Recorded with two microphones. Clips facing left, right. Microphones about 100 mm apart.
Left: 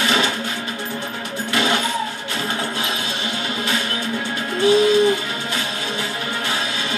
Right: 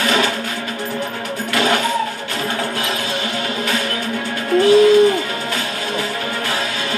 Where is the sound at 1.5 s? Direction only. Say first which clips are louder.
Right 3 dB; 25° left (ahead or behind).